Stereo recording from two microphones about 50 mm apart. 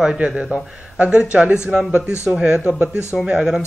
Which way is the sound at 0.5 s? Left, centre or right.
Right.